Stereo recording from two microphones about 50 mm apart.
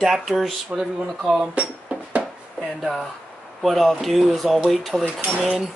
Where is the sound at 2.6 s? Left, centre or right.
Centre.